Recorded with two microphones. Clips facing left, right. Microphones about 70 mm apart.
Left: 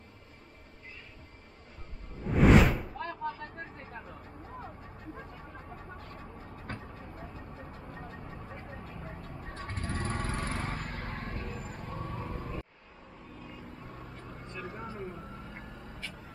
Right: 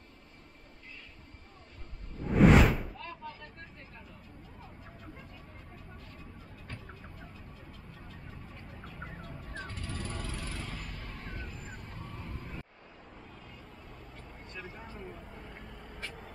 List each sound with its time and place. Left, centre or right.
2.2 s whoosh: centre
3.0 s a sound: left
3.9 s vehicle: left
5.8 s vehicle: left
13.8 s vehicle: left